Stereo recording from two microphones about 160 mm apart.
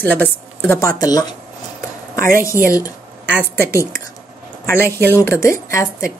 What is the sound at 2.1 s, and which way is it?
Speech, 65° right (ahead or behind).